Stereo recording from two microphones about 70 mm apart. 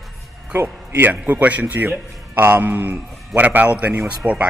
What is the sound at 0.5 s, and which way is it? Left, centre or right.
A man's voice, right.